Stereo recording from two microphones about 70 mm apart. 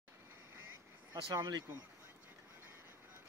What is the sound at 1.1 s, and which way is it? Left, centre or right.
Speech, right.